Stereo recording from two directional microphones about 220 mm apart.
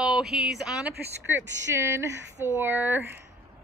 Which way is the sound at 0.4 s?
5° right (ahead or behind).